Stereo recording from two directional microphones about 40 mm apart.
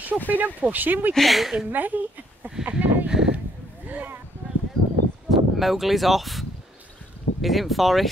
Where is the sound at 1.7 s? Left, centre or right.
Right.